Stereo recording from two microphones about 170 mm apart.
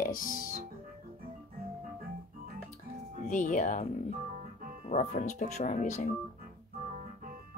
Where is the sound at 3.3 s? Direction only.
45° left (ahead or behind).